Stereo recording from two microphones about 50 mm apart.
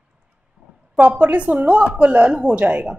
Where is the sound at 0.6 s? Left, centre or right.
Right.